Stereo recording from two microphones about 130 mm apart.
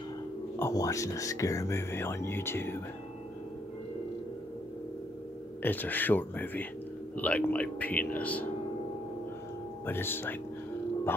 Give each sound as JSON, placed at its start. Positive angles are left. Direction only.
{"t": 0.6, "sound": "speech", "side_deg": 20}
{"t": 5.6, "sound": "speech", "side_deg": 15}
{"t": 9.8, "sound": "speech", "side_deg": 15}